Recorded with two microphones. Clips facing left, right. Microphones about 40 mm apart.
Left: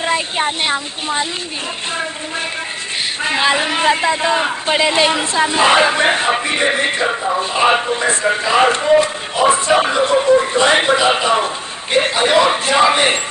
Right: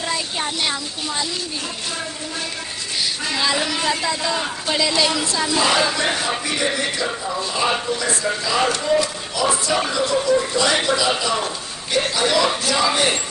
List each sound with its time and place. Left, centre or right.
0.0 s a man's voice: left
3.3 s a man's voice: left